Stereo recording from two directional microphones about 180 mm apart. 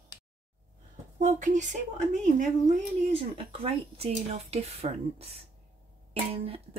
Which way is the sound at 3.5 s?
30° right (ahead or behind).